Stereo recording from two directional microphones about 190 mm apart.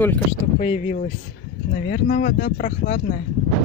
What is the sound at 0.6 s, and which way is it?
Speech, 40° left (ahead or behind).